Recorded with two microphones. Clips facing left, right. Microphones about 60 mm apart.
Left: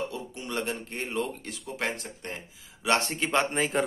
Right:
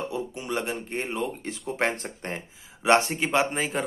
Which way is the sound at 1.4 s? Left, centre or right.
Right.